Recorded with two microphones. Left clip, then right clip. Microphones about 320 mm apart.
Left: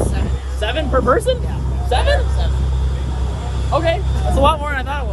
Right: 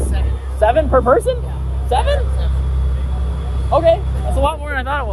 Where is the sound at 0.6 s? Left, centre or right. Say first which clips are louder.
Right 5 dB; centre.